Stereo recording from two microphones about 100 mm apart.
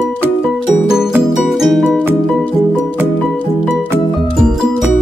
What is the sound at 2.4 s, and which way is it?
Music, 15° left (ahead or behind).